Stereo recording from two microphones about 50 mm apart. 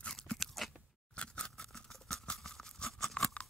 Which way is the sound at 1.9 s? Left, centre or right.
Centre.